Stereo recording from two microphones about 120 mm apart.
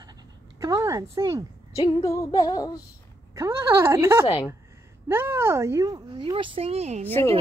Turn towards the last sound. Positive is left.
turn(degrees=-65)  # may be behind; listen again after turning